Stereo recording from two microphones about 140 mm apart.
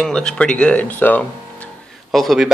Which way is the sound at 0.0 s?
5° left (ahead or behind).